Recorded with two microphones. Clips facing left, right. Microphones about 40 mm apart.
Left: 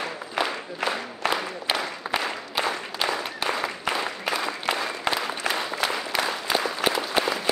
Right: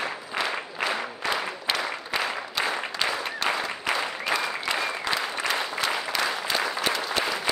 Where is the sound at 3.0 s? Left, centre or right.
Centre.